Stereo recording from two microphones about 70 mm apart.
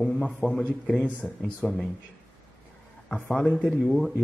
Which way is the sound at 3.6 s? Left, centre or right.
Centre.